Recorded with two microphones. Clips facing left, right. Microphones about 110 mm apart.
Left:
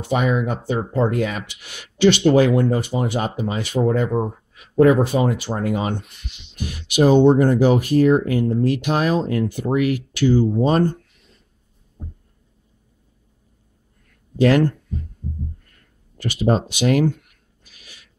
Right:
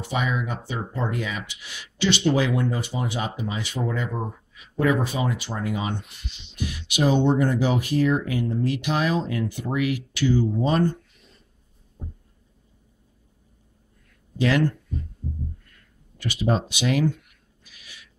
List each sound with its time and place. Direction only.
0.1 s speech: 55° left (ahead or behind)
15.7 s speech: 45° left (ahead or behind)
17.7 s a sound: 40° left (ahead or behind)